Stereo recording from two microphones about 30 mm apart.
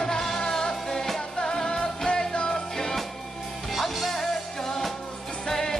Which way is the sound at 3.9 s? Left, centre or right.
Centre.